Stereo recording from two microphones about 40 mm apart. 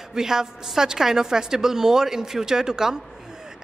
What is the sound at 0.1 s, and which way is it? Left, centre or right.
A man's voice, centre.